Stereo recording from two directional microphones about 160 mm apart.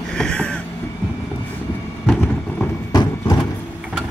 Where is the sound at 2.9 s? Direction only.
25° left (ahead or behind).